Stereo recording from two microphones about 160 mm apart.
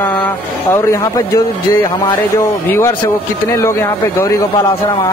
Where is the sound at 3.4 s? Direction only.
15° left (ahead or behind).